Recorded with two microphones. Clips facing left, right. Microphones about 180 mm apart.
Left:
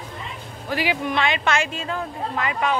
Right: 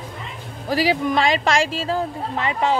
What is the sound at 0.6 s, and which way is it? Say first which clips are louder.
Speech: right 5 dB; 35° right (ahead or behind).